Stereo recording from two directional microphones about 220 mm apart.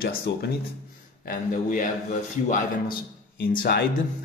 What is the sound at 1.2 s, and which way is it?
Speech, 40° left (ahead or behind).